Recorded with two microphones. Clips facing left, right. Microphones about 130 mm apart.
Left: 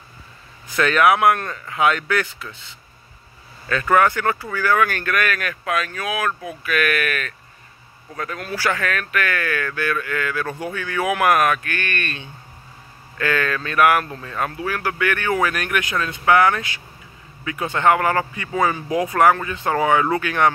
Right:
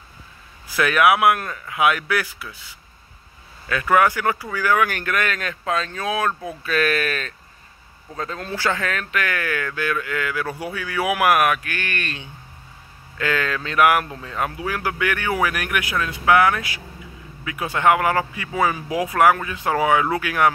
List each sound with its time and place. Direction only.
0.7 s speech: 5° right (ahead or behind)
3.6 s speech: 10° right (ahead or behind)